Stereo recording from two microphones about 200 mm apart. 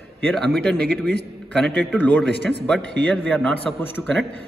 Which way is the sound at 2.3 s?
55° right (ahead or behind).